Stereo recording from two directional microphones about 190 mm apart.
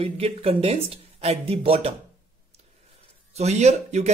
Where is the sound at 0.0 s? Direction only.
30° right (ahead or behind).